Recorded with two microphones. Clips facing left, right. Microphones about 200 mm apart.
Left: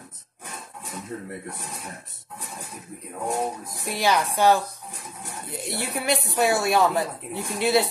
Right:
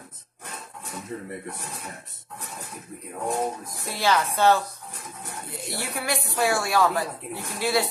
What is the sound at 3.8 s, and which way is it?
A woman's voice, 15° left (ahead or behind).